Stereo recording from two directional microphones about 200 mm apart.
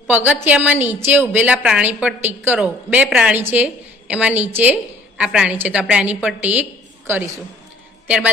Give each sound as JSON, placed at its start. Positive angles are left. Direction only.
{"t": 0.0, "sound": "a woman's voice", "side_deg": -10}